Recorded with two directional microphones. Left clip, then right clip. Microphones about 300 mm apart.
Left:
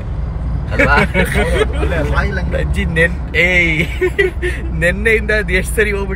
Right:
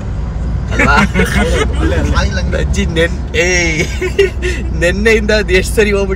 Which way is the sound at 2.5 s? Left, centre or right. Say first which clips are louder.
Right 1 dB; centre.